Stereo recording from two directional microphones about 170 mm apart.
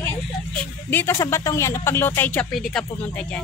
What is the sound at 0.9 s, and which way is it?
A woman's voice, 15° left (ahead or behind).